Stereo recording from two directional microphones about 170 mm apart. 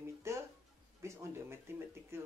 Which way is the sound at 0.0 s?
15° right (ahead or behind).